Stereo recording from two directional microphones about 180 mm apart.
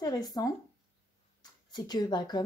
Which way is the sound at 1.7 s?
25° left (ahead or behind).